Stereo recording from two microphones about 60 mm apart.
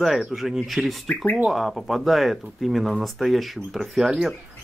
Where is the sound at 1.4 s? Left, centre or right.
Centre.